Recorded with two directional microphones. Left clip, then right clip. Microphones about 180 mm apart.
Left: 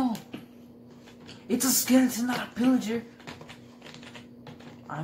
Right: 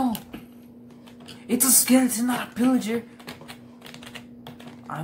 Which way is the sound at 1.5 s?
20° right (ahead or behind).